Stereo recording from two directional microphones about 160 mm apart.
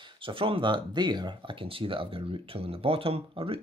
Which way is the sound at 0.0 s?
35° right (ahead or behind).